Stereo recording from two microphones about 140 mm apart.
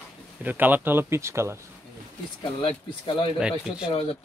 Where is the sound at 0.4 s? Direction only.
15° right (ahead or behind).